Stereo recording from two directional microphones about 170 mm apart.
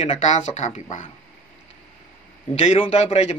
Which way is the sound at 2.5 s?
40° left (ahead or behind).